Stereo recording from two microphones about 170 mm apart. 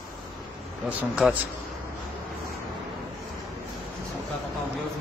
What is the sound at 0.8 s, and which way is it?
Speech, 5° right (ahead or behind).